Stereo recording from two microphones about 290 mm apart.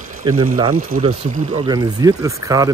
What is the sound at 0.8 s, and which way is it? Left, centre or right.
Speech, right.